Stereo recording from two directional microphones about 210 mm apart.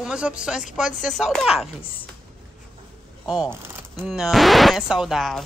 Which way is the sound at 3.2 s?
Centre (ahead or behind).